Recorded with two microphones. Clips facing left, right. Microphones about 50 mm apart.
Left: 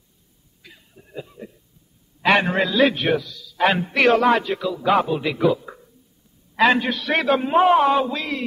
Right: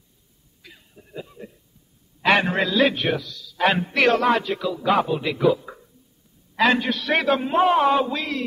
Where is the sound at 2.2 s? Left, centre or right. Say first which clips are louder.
Left 1 dB; centre.